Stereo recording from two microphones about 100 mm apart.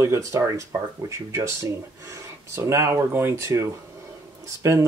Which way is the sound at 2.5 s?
30° right (ahead or behind).